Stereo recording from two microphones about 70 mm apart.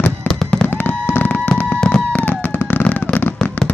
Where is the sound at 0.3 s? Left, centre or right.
Left.